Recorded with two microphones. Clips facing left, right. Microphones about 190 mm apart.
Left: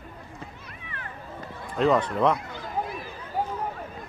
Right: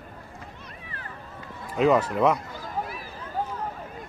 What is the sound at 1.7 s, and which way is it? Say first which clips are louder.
Speech: right 1 dB; 5° right (ahead or behind).